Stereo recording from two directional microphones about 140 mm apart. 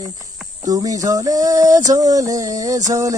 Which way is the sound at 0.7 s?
25° right (ahead or behind).